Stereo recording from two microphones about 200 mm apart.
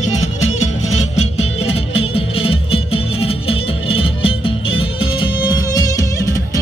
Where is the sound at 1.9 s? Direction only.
30° left (ahead or behind).